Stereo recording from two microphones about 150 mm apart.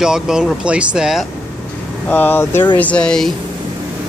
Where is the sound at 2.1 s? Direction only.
15° left (ahead or behind).